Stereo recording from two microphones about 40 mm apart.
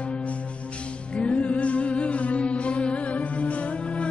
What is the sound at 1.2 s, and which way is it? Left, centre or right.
Music, left.